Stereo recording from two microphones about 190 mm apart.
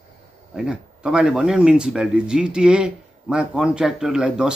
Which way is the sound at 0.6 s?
5° right (ahead or behind).